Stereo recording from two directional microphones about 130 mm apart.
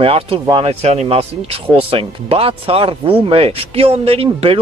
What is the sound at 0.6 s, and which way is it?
Speech, 55° right (ahead or behind).